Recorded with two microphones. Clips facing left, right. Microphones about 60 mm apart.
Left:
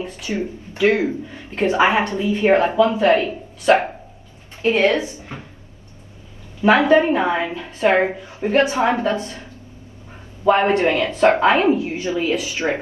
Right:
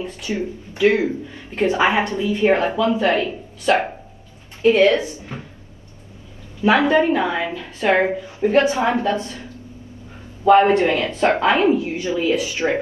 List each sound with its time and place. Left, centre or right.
0.0 s speech: left
6.6 s speech: left
10.5 s speech: left